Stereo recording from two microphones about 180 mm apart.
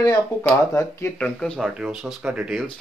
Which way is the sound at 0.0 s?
20° left (ahead or behind).